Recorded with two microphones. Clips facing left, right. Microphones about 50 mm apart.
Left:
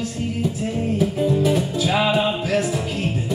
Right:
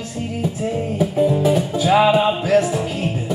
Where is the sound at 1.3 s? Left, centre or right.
Centre.